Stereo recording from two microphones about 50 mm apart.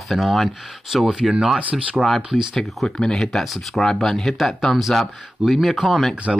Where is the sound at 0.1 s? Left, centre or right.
Centre.